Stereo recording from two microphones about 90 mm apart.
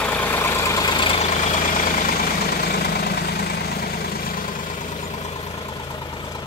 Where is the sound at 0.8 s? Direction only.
60° left (ahead or behind).